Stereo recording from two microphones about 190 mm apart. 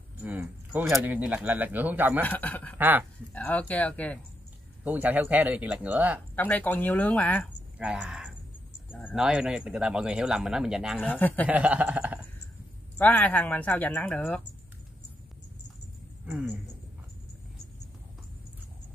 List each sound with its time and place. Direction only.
0.2 s speech: 10° right (ahead or behind)
2.2 s speech: 10° left (ahead or behind)
2.8 s speech: 10° right (ahead or behind)
3.3 s speech: 10° left (ahead or behind)
4.8 s speech: 10° right (ahead or behind)
6.3 s speech: 10° left (ahead or behind)
7.8 s speech: 5° right (ahead or behind)
11.0 s speech: 10° left (ahead or behind)
11.4 s speech: 5° right (ahead or behind)
12.9 s speech: 10° left (ahead or behind)
16.3 s speech: 5° right (ahead or behind)